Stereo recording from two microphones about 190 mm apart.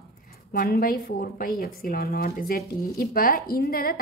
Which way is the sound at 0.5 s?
50° left (ahead or behind).